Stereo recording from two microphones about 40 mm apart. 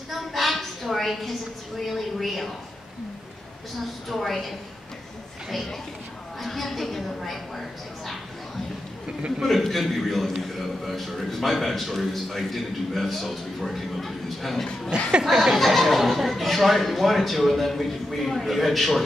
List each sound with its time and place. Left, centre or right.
0.3 s a sound: centre
1.8 s a man's voice: centre
3.8 s a man's voice: centre
6.4 s a man's voice: centre
9.4 s a man's voice: centre
14.9 s speech: right
15.2 s a man's voice: centre